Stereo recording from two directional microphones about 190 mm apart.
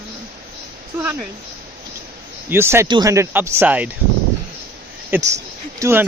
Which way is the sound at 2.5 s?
15° right (ahead or behind).